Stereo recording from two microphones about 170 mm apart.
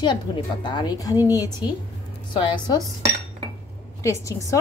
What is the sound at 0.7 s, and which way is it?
Speech, 25° left (ahead or behind).